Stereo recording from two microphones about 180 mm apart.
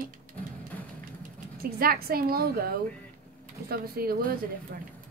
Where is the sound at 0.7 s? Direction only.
10° left (ahead or behind).